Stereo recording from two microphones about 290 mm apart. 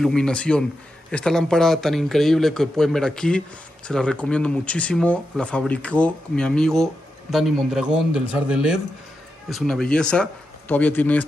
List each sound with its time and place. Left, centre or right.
0.0 s speech: centre